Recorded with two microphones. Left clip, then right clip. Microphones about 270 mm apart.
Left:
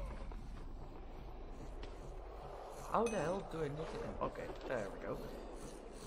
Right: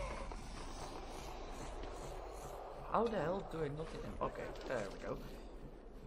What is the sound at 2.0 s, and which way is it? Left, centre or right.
Vehicle, right.